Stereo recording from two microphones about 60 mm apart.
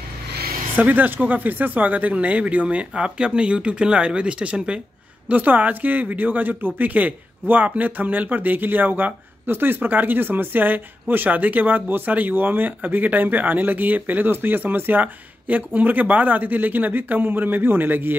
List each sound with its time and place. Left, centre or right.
0.7 s speech: right
5.3 s speech: right